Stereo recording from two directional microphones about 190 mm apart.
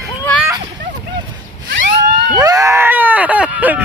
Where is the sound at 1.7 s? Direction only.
65° right (ahead or behind).